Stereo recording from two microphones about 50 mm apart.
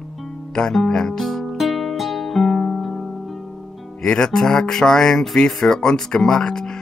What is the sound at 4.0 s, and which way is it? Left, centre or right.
Speech, centre.